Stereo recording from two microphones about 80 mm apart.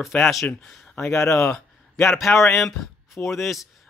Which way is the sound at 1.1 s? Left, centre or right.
Left.